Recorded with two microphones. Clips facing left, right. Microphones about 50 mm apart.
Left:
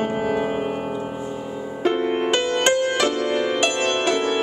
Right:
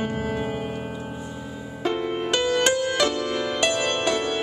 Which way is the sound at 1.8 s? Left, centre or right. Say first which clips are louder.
Left 5 dB; left.